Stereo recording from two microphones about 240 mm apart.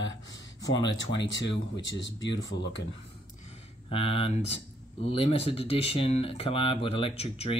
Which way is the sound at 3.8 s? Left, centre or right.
Left.